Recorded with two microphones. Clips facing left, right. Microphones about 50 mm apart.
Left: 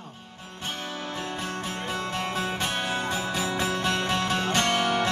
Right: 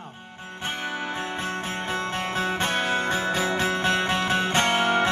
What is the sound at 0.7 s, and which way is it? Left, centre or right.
Music, right.